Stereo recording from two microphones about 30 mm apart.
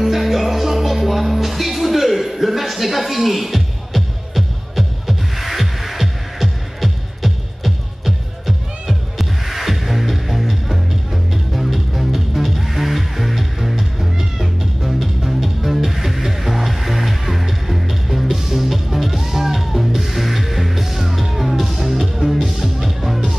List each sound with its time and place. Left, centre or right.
0.0 s music: centre